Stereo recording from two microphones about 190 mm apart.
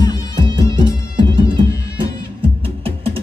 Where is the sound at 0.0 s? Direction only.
20° left (ahead or behind).